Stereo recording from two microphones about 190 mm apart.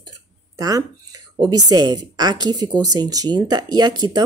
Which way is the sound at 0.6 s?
20° right (ahead or behind).